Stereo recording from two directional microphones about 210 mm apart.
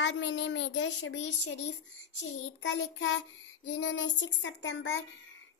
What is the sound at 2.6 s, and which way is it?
A child's voice, 60° left (ahead or behind).